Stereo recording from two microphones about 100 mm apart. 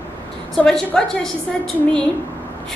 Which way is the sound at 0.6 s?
5° left (ahead or behind).